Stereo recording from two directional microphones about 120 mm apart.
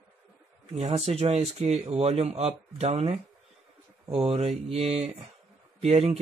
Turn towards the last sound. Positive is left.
turn(degrees=-55)  # may be behind; listen again after turning